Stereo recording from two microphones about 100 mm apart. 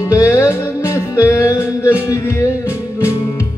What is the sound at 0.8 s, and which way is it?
Music, 30° left (ahead or behind).